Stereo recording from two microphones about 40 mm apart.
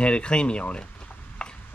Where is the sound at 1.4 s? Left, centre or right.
Left.